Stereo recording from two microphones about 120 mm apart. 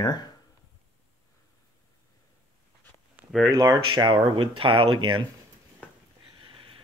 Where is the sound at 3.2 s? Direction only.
15° right (ahead or behind).